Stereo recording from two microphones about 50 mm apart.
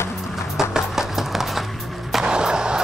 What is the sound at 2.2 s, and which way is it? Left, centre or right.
Skateboard, centre.